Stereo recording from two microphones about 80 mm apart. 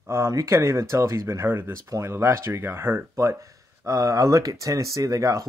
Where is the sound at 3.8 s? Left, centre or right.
Right.